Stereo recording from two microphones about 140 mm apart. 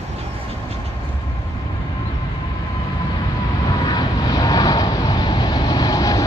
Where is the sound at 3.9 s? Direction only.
30° left (ahead or behind).